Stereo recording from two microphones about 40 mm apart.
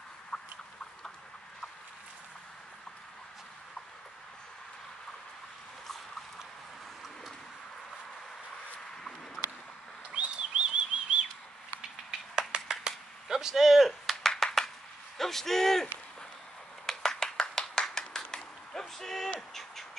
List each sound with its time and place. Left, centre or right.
0.3 s rodents: left
10.1 s bird: right
12.1 s a sound: centre
14.3 s clapping: centre
15.1 s a man's voice: centre
16.8 s clapping: centre
17.9 s a sound: centre